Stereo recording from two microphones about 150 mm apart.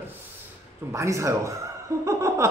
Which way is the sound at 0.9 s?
20° right (ahead or behind).